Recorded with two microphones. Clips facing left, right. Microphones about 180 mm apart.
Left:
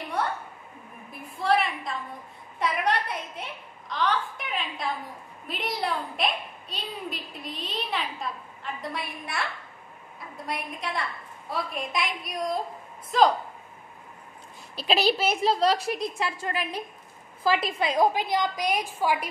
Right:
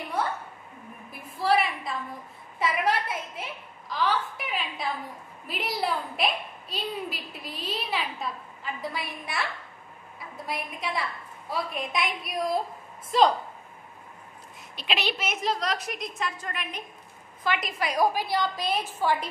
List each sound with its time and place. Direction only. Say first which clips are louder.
1.4 s a sound: even; 5° right (ahead or behind)
2.6 s a woman's voice: even; centre (ahead or behind)
14.8 s a woman's voice: left 6 dB; 35° left (ahead or behind); by 19.2 s 10° left (ahead or behind)